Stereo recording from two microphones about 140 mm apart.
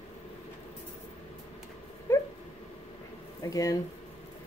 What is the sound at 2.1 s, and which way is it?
Dog, 20° left (ahead or behind).